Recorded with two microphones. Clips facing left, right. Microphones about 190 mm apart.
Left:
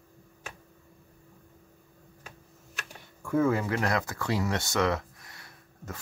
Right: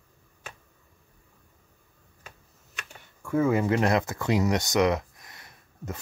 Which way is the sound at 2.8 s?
Centre (ahead or behind).